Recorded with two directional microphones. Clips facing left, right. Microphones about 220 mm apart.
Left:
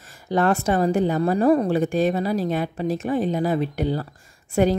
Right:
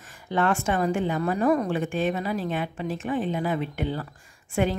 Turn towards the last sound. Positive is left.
turn(degrees=40)  # may be behind; listen again after turning